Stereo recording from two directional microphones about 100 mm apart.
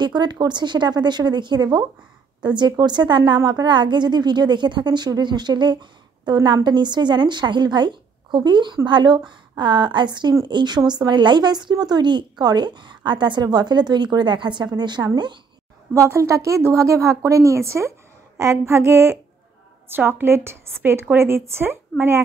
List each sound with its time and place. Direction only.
0.0 s a woman's voice: 45° right (ahead or behind)
15.9 s a woman's voice: 30° right (ahead or behind)